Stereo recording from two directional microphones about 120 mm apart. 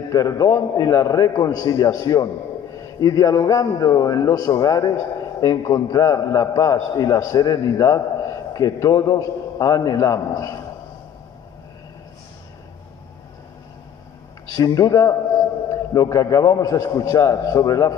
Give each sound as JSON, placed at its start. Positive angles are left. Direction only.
{"t": 0.1, "sound": "a man's voice", "side_deg": 30}
{"t": 14.5, "sound": "a man's voice", "side_deg": 30}